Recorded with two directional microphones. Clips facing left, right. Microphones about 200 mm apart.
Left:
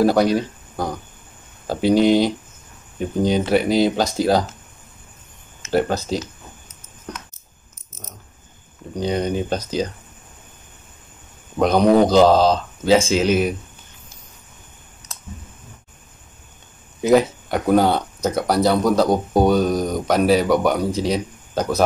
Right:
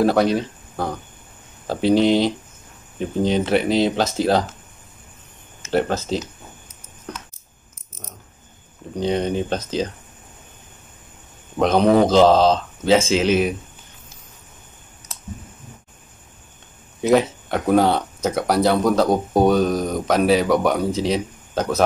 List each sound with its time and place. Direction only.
0.0 s speech: centre (ahead or behind)
5.7 s speech: centre (ahead or behind)
9.1 s speech: 5° left (ahead or behind)
9.6 s speech: 25° right (ahead or behind)
11.5 s speech: centre (ahead or behind)
17.0 s speech: centre (ahead or behind)